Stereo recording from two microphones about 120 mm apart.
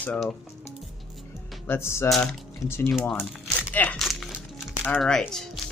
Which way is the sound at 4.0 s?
Centre (ahead or behind).